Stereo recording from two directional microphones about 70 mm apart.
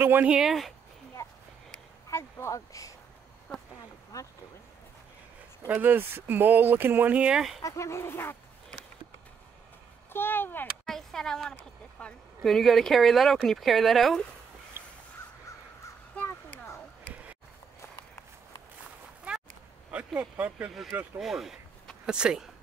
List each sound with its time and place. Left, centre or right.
0.0 s speech: right
0.3 s speech: centre
2.0 s speech: left
4.1 s speech: left
5.7 s speech: right
7.6 s speech: left
10.1 s speech: left
10.9 s speech: centre
12.4 s speech: centre
14.8 s crow: right
19.3 s a sound: centre
20.2 s speech: centre
21.2 s speech: centre